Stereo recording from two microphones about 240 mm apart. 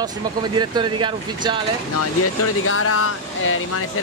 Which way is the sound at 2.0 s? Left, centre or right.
Left.